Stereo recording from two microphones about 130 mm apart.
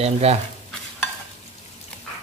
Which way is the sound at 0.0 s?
55° right (ahead or behind).